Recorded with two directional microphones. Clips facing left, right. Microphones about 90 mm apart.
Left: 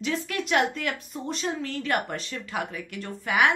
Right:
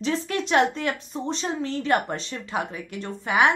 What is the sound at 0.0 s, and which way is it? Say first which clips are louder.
Speech: right 3 dB; 30° right (ahead or behind).